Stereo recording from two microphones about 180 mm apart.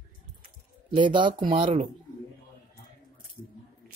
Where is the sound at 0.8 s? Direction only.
25° right (ahead or behind).